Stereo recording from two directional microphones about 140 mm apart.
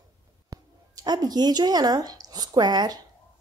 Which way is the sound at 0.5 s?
30° right (ahead or behind).